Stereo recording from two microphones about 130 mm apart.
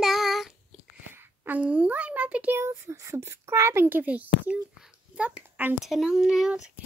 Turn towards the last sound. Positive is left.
turn(degrees=-5)  # may be behind; listen again after turning